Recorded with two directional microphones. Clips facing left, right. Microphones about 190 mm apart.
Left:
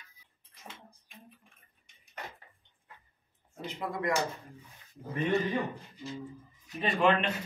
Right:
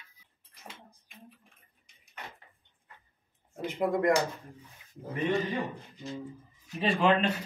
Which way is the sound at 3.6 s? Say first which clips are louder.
Right 7 dB; 50° right (ahead or behind).